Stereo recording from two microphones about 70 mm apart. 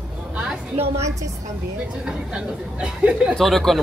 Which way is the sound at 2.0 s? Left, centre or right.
Centre.